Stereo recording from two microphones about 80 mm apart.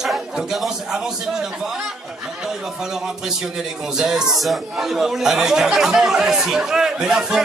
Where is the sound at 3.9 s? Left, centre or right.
Centre.